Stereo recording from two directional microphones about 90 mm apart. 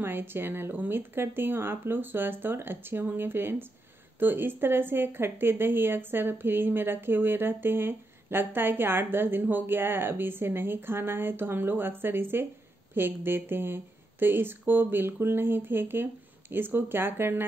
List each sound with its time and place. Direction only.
0.0 s speech: 25° right (ahead or behind)